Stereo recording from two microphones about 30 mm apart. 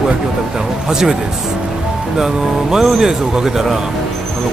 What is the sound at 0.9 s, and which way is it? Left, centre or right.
Speech, centre.